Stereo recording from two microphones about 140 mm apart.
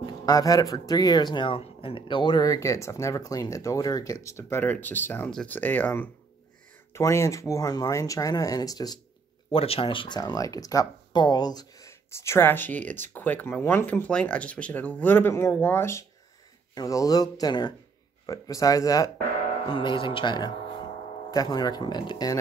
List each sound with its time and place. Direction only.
0.0 s speech: 25° left (ahead or behind)
9.5 s speech: 45° left (ahead or behind)